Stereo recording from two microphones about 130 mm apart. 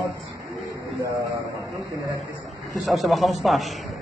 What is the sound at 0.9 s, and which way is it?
Speech, 25° right (ahead or behind).